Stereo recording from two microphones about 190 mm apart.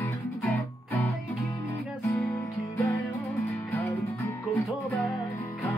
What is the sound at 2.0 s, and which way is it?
Music, 10° left (ahead or behind).